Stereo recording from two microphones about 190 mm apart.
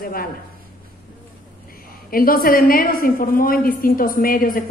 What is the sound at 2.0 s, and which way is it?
A man's voice, 50° left (ahead or behind).